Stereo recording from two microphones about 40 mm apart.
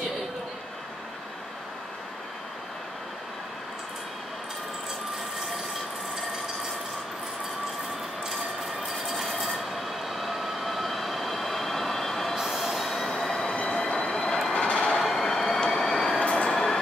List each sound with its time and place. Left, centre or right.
8.8 s train: centre
14.5 s train: left
15.0 s vehicle: centre
15.6 s train: centre
16.3 s train: left